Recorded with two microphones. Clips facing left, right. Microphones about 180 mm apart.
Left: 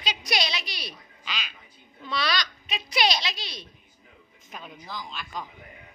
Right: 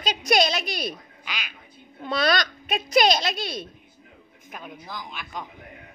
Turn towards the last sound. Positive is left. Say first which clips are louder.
# right 1 dB
turn(degrees=-15)  # may be behind; listen again after turning